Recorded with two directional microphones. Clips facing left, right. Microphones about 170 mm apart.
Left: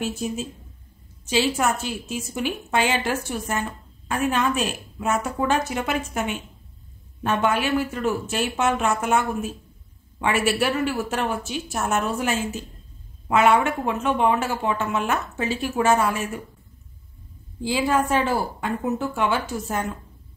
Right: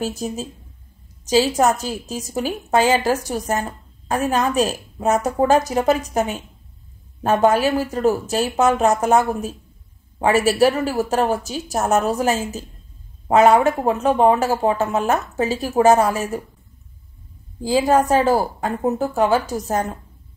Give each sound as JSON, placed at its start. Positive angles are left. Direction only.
{"t": 0.0, "sound": "speech", "side_deg": -40}
{"t": 17.6, "sound": "speech", "side_deg": -40}